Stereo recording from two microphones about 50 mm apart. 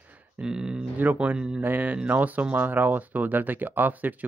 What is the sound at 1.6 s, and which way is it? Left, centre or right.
A man's voice, right.